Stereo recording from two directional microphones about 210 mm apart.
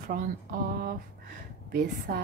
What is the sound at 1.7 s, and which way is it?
Speech, 45° right (ahead or behind).